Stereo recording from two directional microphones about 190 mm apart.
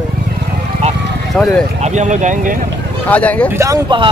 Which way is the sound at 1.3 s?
Centre (ahead or behind).